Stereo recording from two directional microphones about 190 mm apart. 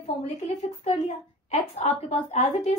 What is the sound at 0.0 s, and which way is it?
A woman's voice, 35° left (ahead or behind).